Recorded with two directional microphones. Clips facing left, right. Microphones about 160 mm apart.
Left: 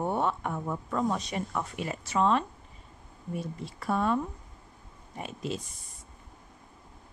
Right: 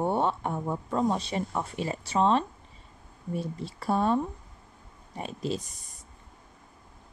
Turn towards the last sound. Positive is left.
turn(degrees=-35)  # may be behind; listen again after turning